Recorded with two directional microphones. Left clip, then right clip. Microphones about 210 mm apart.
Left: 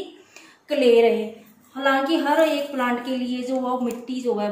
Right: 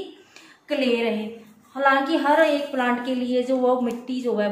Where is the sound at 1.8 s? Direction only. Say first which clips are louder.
Right 1 dB; 20° right (ahead or behind).